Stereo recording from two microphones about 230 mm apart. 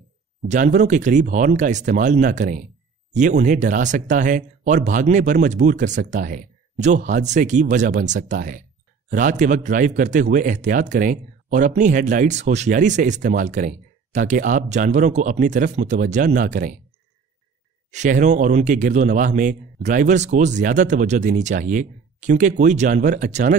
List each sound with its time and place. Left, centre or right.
0.5 s speech: right
17.9 s speech: right